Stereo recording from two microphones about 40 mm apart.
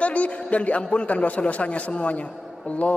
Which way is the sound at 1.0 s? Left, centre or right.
Left.